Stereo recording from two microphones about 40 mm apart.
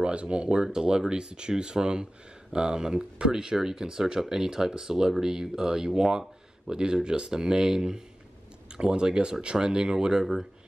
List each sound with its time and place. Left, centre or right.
0.0 s speech: right